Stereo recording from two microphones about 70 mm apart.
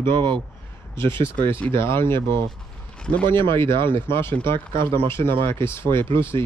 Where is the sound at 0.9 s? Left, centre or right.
Left.